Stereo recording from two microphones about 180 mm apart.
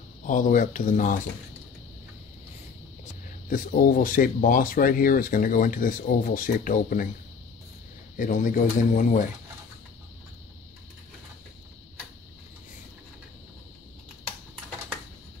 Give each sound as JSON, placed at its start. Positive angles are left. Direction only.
{"t": 0.3, "sound": "speech", "side_deg": 45}
{"t": 3.4, "sound": "speech", "side_deg": 50}
{"t": 8.2, "sound": "speech", "side_deg": 45}